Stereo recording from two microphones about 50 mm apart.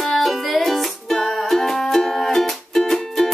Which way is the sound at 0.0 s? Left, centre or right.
Centre.